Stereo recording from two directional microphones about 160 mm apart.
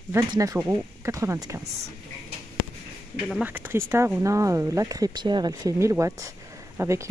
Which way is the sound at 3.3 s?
10° right (ahead or behind).